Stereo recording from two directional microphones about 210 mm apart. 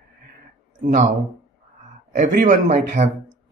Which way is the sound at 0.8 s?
40° right (ahead or behind).